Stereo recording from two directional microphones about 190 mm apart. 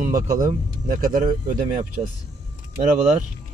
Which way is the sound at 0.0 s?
45° right (ahead or behind).